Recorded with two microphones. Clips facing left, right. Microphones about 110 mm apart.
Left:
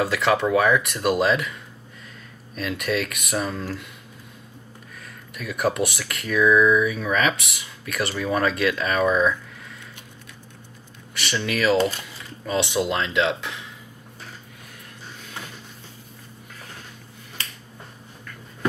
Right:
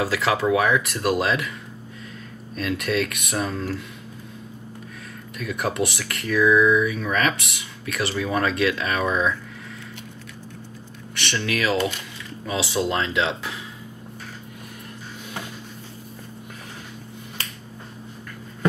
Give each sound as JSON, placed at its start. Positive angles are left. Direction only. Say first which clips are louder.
{"t": 0.0, "sound": "speech", "louder": "left 1 dB", "side_deg": 0}
{"t": 2.5, "sound": "speech", "louder": "right 1 dB", "side_deg": 0}
{"t": 5.4, "sound": "speech", "louder": "left 1 dB", "side_deg": 0}
{"t": 11.1, "sound": "speech", "louder": "even", "side_deg": 5}